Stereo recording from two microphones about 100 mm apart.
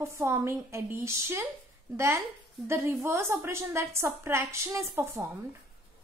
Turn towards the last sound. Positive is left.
turn(degrees=-25)  # may be behind; listen again after turning